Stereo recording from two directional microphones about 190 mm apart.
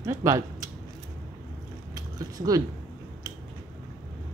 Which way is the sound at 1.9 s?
20° right (ahead or behind).